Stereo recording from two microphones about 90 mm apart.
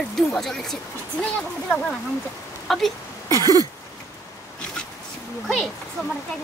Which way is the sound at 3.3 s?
45° right (ahead or behind).